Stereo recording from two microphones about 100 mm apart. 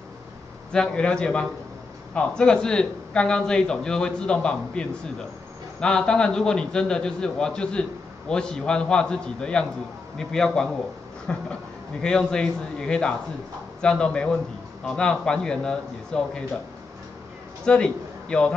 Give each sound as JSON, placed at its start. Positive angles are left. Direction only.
{"t": 0.7, "sound": "a man's voice", "side_deg": 10}
{"t": 17.6, "sound": "a man's voice", "side_deg": 10}